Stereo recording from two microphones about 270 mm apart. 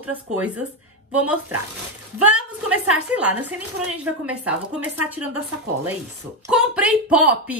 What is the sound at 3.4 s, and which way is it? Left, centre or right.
Speech, centre.